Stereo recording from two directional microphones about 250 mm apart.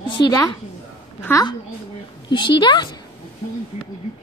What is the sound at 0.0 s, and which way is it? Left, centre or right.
A woman's voice, centre.